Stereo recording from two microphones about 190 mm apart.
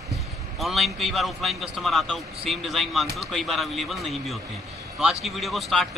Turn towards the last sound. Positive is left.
turn(degrees=0)  # may be behind; listen again after turning